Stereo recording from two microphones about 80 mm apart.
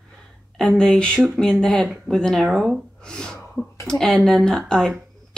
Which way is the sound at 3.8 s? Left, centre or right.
Centre.